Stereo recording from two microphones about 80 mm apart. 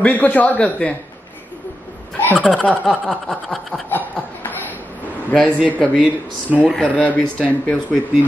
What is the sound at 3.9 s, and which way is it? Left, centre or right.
Chuckle, left.